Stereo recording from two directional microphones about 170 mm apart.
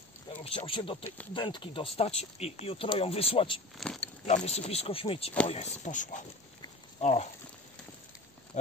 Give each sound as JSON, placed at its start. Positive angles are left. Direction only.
{"t": 0.4, "sound": "speech", "side_deg": 30}
{"t": 3.7, "sound": "speech", "side_deg": 0}
{"t": 4.3, "sound": "speech", "side_deg": 40}